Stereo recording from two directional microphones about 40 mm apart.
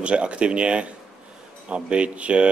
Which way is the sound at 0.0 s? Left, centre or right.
Right.